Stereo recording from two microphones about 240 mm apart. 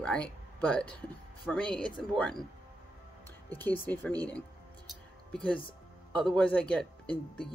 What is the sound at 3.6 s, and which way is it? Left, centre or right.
Speech, centre.